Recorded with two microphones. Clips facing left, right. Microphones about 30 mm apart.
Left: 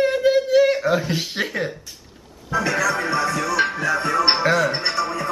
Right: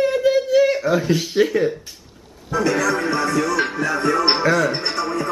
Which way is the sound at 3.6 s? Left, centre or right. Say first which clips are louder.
Right 1 dB; centre.